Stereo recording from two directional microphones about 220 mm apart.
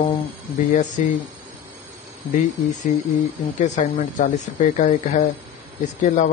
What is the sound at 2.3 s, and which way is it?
Speech, 35° left (ahead or behind).